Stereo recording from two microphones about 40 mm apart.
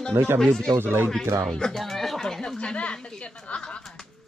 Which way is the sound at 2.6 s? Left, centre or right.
Left.